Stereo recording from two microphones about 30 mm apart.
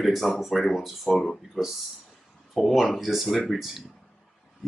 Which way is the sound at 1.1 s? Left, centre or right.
Centre.